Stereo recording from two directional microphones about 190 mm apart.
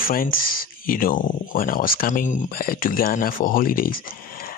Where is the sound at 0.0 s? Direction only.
50° left (ahead or behind).